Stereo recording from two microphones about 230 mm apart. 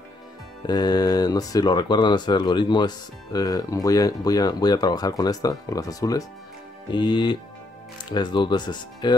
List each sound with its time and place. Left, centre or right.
0.7 s speech: centre